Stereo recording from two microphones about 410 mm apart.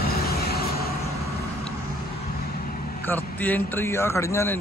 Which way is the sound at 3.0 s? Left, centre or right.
Centre.